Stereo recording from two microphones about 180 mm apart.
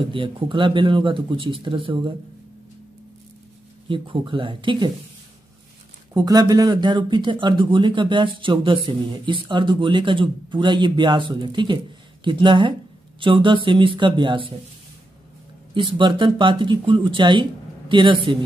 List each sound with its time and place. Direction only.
0.1 s speech: 25° right (ahead or behind)
3.9 s speech: 30° right (ahead or behind)
6.1 s speech: 20° right (ahead or behind)
15.7 s speech: 25° right (ahead or behind)